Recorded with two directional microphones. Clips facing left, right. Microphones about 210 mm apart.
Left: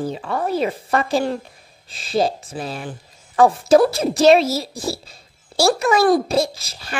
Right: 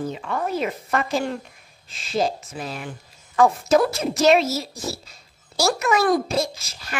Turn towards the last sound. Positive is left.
turn(degrees=30)  # may be behind; listen again after turning